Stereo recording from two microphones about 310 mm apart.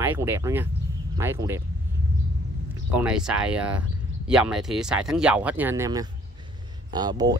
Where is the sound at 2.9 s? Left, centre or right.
Centre.